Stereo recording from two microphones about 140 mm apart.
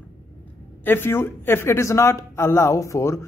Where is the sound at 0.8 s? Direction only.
15° left (ahead or behind).